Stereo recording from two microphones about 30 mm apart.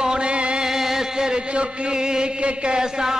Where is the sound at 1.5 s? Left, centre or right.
Right.